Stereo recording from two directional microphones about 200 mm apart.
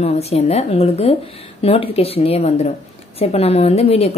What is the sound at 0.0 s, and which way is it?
A woman's voice, 30° left (ahead or behind).